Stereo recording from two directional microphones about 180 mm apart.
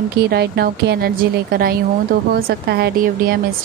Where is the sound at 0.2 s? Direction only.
60° right (ahead or behind).